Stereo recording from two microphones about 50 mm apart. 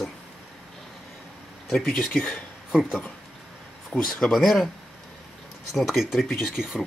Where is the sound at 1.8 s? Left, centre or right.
Centre.